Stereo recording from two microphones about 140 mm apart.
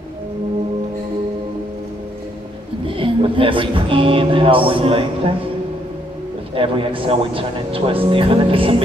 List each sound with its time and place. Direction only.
2.9 s a man's voice: 40° right (ahead or behind)
6.5 s a man's voice: 40° right (ahead or behind)